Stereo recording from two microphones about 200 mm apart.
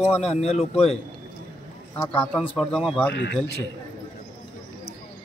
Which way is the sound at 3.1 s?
60° left (ahead or behind).